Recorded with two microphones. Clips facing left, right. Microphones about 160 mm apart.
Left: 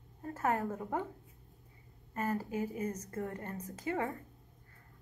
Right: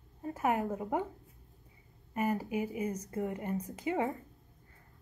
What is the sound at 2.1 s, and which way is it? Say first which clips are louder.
A woman's voice: right 3 dB; 15° right (ahead or behind).